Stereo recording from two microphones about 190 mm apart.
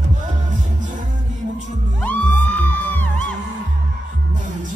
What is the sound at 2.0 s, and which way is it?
Music, 5° left (ahead or behind).